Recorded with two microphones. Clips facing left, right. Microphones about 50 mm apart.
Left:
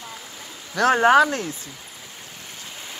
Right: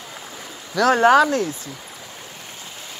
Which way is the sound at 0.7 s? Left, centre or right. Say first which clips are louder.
Right 1 dB; left.